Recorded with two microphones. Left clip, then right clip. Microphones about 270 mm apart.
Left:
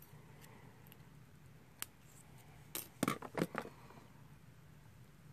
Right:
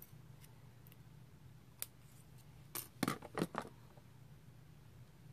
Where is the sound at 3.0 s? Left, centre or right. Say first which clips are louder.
Left 2 dB; centre.